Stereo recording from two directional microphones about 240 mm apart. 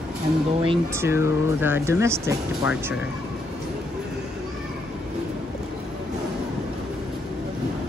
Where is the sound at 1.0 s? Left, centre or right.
Centre.